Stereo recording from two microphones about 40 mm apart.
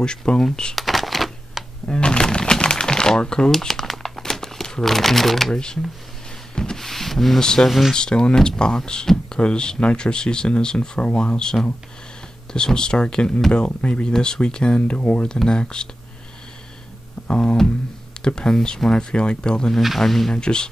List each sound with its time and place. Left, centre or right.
0.0 s speech: centre
0.7 s a sound: centre
1.9 s speech: left
3.6 s crumpling: centre
5.5 s speech: left
6.5 s a sound: centre
7.3 s speech: centre
7.6 s speech: centre
7.9 s speech: left
14.0 s speech: centre
15.2 s speech: centre
17.3 s speech: left
20.0 s speech: centre
20.3 s speech: left